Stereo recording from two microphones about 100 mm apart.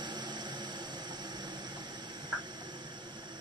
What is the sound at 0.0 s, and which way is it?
Vehicle, 45° right (ahead or behind).